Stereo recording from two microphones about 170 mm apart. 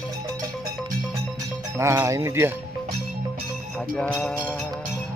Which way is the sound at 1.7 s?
15° right (ahead or behind).